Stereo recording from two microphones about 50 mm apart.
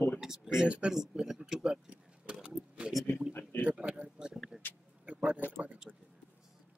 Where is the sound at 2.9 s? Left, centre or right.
Centre.